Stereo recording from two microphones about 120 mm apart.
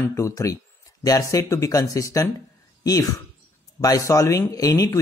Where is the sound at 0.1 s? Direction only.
25° left (ahead or behind).